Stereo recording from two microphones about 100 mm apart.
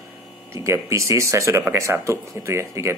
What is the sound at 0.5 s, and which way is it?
A man's voice, 30° right (ahead or behind).